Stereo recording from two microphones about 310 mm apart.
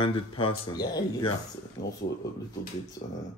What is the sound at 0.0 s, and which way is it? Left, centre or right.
Speech, centre.